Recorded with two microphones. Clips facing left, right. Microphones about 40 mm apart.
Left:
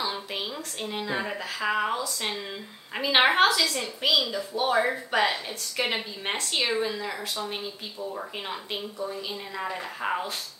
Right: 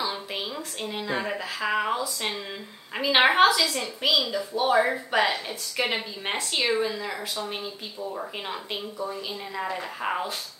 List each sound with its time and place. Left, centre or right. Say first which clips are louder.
0.0 s a woman's voice: right 1 dB; centre